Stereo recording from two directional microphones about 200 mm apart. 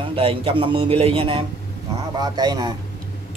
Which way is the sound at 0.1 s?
30° right (ahead or behind).